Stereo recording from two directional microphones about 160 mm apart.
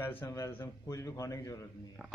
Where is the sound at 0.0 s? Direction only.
15° left (ahead or behind).